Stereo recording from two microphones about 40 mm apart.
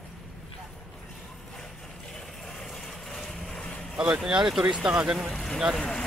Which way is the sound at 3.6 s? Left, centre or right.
Left.